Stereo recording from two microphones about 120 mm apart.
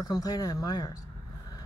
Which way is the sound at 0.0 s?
30° left (ahead or behind).